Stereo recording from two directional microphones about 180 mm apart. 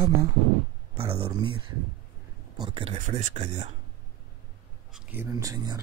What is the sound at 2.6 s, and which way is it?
Speech, 30° right (ahead or behind).